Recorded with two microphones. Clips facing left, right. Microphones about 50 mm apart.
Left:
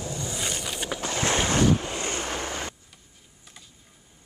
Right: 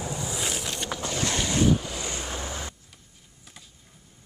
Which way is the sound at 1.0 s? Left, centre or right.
Left.